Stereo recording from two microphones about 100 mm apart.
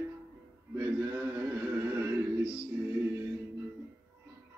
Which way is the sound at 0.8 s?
25° right (ahead or behind).